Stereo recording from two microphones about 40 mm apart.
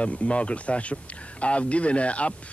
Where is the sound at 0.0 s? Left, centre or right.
Left.